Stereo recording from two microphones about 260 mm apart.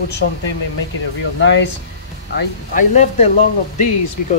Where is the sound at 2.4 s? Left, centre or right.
Left.